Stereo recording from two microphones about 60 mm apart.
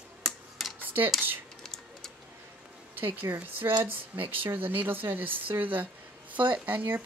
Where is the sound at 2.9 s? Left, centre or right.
Right.